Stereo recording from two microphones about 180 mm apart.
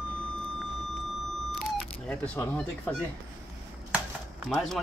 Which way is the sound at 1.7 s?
5° left (ahead or behind).